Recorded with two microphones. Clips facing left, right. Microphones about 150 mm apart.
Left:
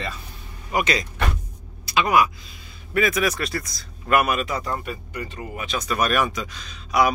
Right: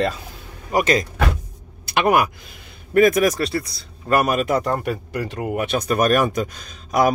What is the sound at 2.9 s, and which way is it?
Speech, 45° right (ahead or behind).